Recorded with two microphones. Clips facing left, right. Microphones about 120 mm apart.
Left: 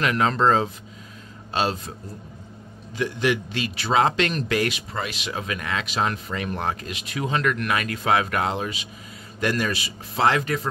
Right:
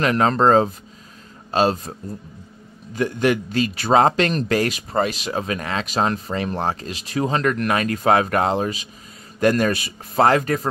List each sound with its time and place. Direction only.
0.0 s a man's voice: 40° right (ahead or behind)
2.9 s a man's voice: 45° right (ahead or behind)